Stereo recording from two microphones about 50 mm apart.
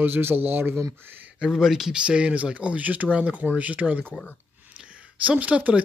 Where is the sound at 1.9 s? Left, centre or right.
Right.